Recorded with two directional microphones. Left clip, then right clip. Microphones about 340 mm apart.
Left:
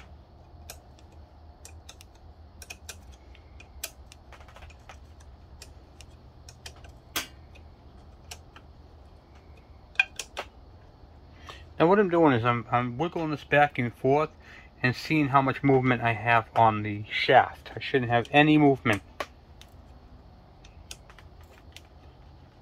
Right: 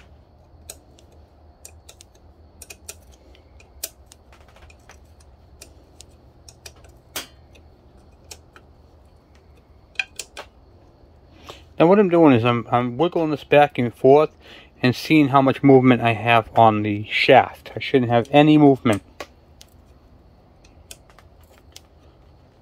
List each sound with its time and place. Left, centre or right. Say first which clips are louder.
11.4 s a man's voice: right 7 dB; right